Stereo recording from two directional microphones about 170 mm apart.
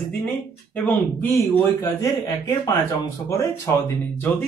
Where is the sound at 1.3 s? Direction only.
20° left (ahead or behind).